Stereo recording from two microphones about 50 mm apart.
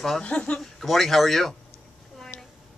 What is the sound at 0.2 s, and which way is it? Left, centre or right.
Speech, left.